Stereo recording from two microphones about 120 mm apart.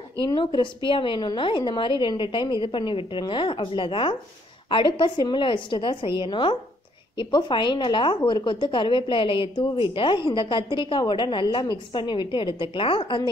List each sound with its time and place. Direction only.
0.2 s a woman's voice: 45° left (ahead or behind)